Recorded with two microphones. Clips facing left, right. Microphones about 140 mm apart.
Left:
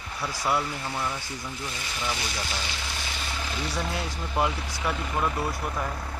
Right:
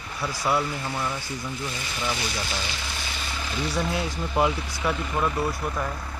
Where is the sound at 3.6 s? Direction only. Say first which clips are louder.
Right 5 dB; 10° right (ahead or behind).